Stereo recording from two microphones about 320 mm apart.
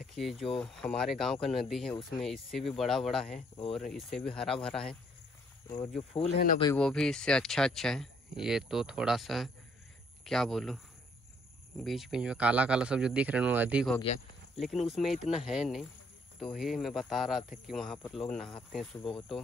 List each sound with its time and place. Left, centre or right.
0.0 s speech: centre
6.3 s speech: left
6.6 s speech: centre
11.8 s speech: centre